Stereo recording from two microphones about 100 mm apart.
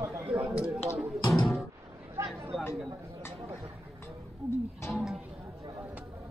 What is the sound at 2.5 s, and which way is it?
Speech, 5° left (ahead or behind).